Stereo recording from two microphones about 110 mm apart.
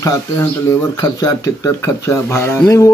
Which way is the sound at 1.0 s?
35° left (ahead or behind).